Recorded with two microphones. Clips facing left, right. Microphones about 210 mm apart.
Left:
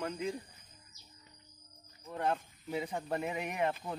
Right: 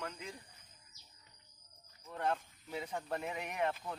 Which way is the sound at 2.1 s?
10° left (ahead or behind).